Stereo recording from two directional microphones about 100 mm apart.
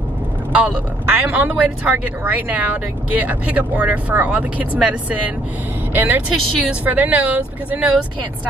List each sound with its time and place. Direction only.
0.5 s speech: 15° right (ahead or behind)